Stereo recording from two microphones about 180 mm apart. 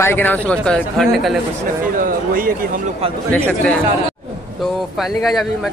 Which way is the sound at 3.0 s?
35° right (ahead or behind).